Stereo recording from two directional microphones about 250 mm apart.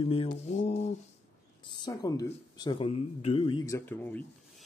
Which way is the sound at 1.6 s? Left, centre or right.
Centre.